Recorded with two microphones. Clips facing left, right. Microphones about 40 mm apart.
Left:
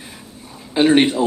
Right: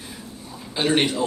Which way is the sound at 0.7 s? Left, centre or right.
Centre.